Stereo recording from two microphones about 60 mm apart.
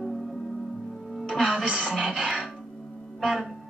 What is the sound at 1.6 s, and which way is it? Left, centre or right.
A woman's voice, centre.